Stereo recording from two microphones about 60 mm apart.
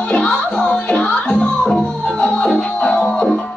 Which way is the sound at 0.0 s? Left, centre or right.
Centre.